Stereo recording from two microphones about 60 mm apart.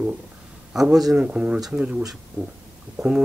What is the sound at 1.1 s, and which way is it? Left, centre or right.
Speech, centre.